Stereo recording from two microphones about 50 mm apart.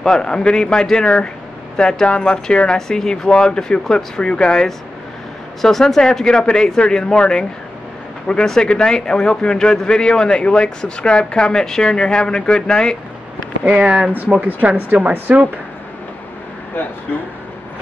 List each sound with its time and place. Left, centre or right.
0.0 s a man's voice: centre
13.7 s speech: centre
14.4 s speech: right